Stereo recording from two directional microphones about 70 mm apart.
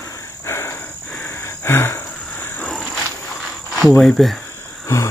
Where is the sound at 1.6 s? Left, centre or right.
Left.